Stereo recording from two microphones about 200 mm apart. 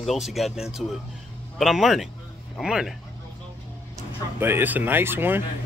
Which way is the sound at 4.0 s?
10° right (ahead or behind).